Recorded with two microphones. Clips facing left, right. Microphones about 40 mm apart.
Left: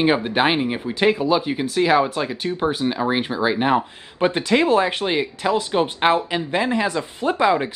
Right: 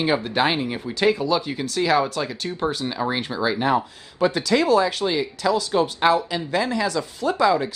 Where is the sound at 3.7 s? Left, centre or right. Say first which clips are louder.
Left 2 dB; left.